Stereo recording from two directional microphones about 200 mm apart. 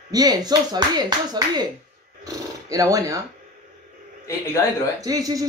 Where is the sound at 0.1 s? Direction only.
20° right (ahead or behind).